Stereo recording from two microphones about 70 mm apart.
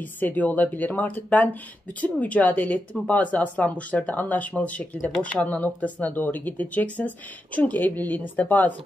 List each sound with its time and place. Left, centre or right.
0.0 s speech: left